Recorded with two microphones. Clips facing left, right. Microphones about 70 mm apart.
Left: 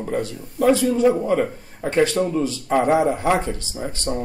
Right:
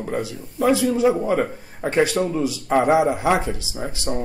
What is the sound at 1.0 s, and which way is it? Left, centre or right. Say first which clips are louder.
Speech: left 1 dB; centre.